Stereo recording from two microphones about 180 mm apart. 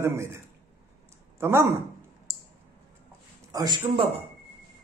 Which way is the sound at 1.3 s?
15° right (ahead or behind).